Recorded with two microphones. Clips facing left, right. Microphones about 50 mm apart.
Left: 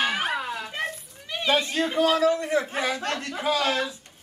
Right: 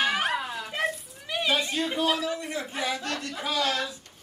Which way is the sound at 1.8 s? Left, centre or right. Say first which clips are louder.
Left 4 dB; left.